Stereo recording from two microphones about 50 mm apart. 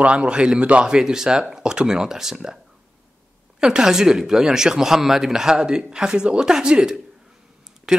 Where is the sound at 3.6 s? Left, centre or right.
Centre.